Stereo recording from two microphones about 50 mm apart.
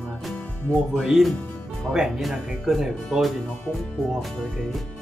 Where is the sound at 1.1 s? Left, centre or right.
Centre.